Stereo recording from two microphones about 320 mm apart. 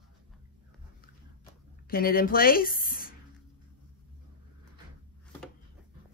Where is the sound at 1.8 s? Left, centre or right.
Left.